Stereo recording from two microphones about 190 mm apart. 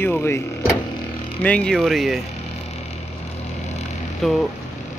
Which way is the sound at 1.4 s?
5° left (ahead or behind).